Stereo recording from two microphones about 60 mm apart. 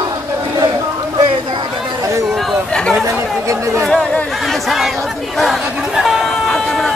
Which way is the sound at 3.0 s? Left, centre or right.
Right.